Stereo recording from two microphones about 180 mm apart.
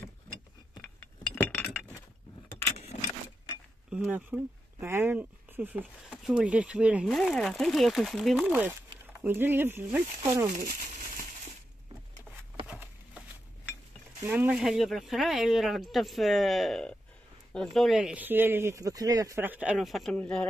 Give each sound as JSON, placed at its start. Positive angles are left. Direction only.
{"t": 1.3, "sound": "chink", "side_deg": 10}
{"t": 2.9, "sound": "keys jangling", "side_deg": 40}
{"t": 3.9, "sound": "speech", "side_deg": -5}
{"t": 12.6, "sound": "a sound", "side_deg": -10}
{"t": 14.2, "sound": "speech", "side_deg": -10}